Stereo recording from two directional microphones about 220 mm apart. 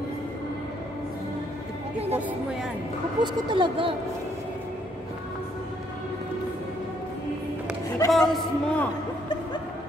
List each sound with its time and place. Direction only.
2.1 s speech: 5° right (ahead or behind)
3.2 s speech: 20° right (ahead or behind)
8.1 s a man's voice: centre (ahead or behind)